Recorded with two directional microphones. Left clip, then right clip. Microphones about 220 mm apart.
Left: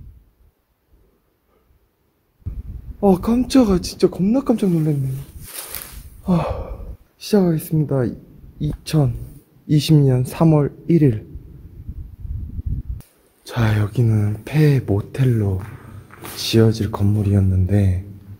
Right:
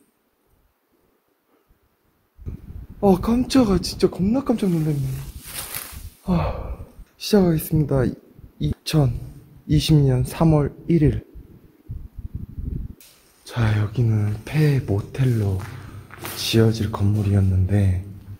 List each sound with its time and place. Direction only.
3.0 s speech: 15° left (ahead or behind)
6.2 s speech: 30° left (ahead or behind)
7.2 s speech: centre (ahead or behind)
9.7 s speech: 20° left (ahead or behind)
13.4 s speech: 45° left (ahead or behind); by 18.0 s 25° left (ahead or behind)